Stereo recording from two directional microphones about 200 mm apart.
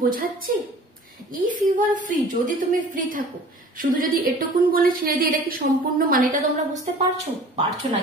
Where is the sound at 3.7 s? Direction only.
45° right (ahead or behind).